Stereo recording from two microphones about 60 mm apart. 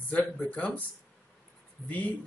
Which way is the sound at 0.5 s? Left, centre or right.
Left.